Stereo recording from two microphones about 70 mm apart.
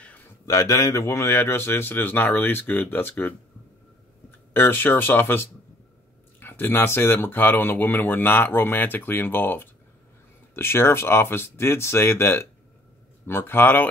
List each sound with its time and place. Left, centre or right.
0.5 s speech: left
0.8 s speech: left
4.6 s speech: left